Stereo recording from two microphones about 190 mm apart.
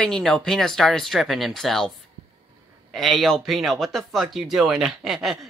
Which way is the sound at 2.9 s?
Centre (ahead or behind).